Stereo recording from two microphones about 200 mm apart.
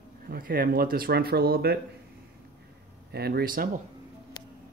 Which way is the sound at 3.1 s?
50° right (ahead or behind).